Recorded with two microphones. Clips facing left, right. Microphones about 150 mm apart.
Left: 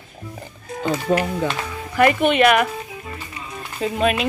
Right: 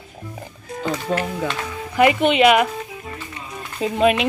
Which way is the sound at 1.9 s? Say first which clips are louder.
Even; 10° right (ahead or behind).